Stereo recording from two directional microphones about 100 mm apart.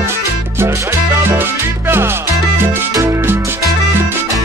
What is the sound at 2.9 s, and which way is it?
Music, 35° right (ahead or behind).